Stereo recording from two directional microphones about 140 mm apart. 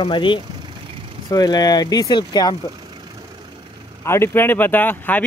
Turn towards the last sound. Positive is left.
turn(degrees=15)  # may be behind; listen again after turning